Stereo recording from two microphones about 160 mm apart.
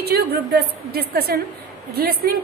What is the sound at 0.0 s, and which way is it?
A woman's voice, 85° right.